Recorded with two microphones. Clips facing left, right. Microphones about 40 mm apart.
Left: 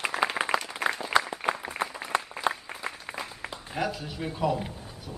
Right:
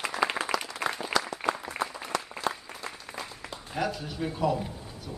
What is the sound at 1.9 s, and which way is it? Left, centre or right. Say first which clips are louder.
Applause: left 1 dB; centre.